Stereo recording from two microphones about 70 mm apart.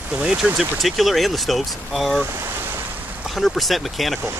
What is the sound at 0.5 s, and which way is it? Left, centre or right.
Speech, centre.